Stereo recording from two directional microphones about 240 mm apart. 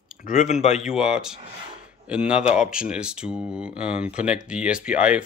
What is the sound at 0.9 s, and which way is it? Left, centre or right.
Speech, centre.